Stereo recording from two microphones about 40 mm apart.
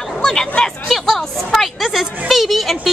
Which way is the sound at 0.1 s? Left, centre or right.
Centre.